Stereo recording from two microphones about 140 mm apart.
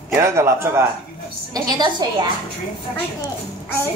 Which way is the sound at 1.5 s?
30° right (ahead or behind).